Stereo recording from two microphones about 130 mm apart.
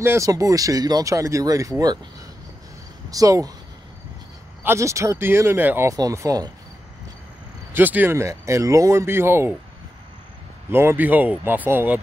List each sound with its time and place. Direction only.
0.0 s speech: 20° right (ahead or behind)
3.1 s speech: 25° right (ahead or behind)
4.6 s speech: 25° right (ahead or behind)
7.7 s speech: 15° right (ahead or behind)
10.7 s speech: 20° right (ahead or behind)